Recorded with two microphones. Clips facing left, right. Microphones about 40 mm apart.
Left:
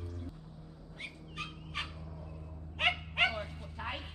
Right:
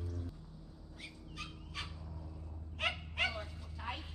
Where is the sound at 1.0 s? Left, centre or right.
Left.